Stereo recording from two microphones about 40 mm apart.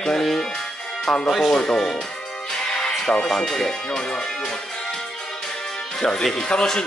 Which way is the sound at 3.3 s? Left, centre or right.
Centre.